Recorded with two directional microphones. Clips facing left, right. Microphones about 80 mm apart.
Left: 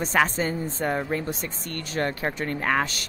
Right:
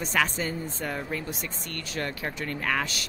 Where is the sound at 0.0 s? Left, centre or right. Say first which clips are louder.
Left 4 dB; left.